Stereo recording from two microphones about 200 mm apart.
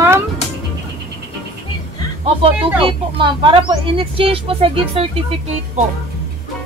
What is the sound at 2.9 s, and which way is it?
Speech, 25° right (ahead or behind).